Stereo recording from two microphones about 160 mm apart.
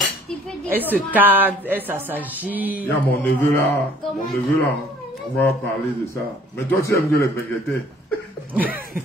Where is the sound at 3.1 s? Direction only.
10° left (ahead or behind).